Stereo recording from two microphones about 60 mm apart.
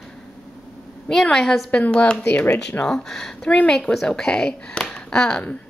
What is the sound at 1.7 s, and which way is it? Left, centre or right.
Speech, centre.